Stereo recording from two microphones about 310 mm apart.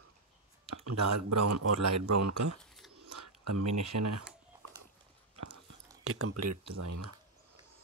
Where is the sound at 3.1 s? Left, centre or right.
Right.